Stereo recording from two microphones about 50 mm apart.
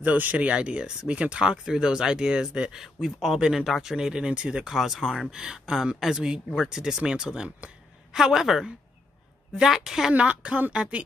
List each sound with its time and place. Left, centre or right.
0.0 s speech: right; by 4.7 s centre
4.7 s speech: centre
10.1 s a woman's voice: right